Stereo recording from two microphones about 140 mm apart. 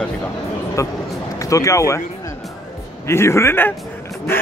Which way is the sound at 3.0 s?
20° left (ahead or behind).